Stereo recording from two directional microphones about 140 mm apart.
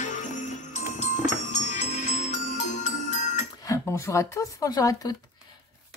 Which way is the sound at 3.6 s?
20° left (ahead or behind).